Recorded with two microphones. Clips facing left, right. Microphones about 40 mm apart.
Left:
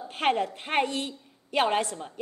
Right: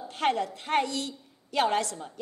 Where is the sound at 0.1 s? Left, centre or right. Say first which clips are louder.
Left 1 dB; left.